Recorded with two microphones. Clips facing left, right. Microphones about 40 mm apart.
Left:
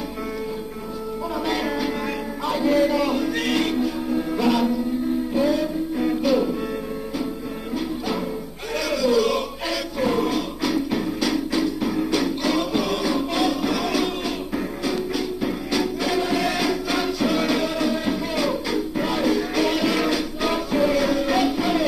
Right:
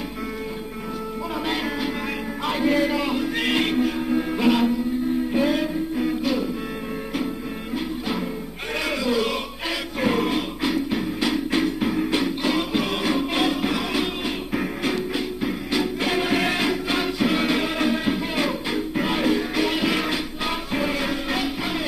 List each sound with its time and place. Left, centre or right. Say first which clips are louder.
1.5 s music: left 2 dB; centre
2.4 s music: left 2 dB; right
5.9 s music: left 5 dB; centre
8.7 s a sound: left 3 dB; right
9.9 s a sound: even; right
10.7 s music: left 2 dB; centre
11.5 s music: even; right
11.9 s music: even; right
13.0 s music: even; right
15.4 s music: even; centre
16.0 s music: even; right
16.5 s music: even; right
19.5 s music: left 1 dB; centre